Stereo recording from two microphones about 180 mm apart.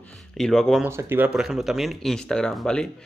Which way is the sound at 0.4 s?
Centre (ahead or behind).